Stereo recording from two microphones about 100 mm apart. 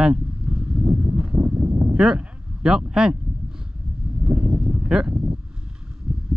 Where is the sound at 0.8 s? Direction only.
25° right (ahead or behind).